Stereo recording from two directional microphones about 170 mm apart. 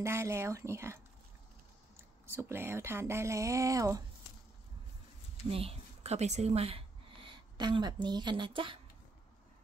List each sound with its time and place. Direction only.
0.0 s speech: 15° right (ahead or behind)
2.2 s speech: 15° right (ahead or behind)
5.5 s a woman's voice: 35° right (ahead or behind)